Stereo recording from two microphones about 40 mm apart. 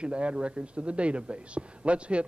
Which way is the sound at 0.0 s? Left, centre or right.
Right.